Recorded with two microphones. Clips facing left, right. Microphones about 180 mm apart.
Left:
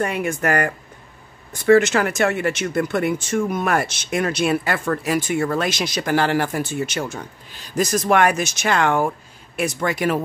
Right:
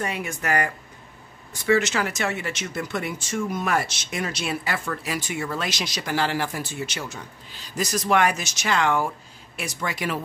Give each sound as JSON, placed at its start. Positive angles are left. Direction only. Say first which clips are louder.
{"t": 0.0, "sound": "speech", "louder": "left 7 dB", "side_deg": 55}